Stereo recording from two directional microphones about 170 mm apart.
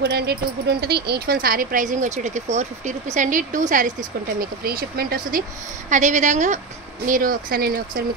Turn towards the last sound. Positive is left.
turn(degrees=-60)  # may be behind; listen again after turning